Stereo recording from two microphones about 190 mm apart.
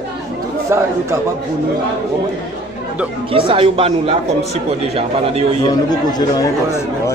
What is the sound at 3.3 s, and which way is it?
Speech, 30° right (ahead or behind).